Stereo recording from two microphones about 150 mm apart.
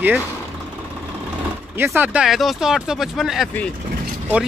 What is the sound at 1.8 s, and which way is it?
Speech, 15° right (ahead or behind).